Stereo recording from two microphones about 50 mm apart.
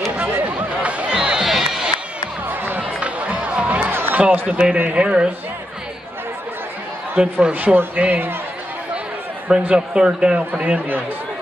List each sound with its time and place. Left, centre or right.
0.2 s a sound: right
1.1 s crowd: centre
2.4 s music: right
3.0 s music: right
3.9 s a sound: right
4.2 s speech: right
7.2 s a man's voice: right
9.8 s speech: centre
10.5 s a man's voice: right